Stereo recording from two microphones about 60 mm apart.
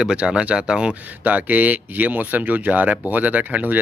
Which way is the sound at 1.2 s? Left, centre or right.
Right.